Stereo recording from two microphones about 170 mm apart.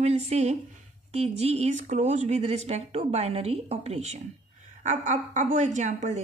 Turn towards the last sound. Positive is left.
turn(degrees=-45)  # may be behind; listen again after turning